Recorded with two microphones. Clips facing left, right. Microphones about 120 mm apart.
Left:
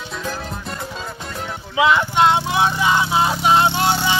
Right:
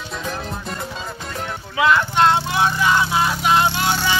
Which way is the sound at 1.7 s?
15° left (ahead or behind).